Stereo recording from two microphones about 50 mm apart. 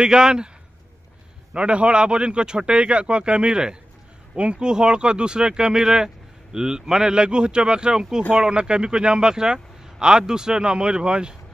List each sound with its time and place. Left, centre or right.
0.0 s speech: centre
1.5 s a man's voice: right